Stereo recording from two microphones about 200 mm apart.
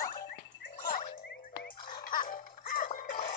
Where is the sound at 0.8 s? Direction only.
40° left (ahead or behind).